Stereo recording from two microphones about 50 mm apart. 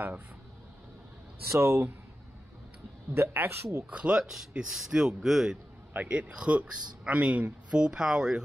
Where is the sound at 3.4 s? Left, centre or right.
Right.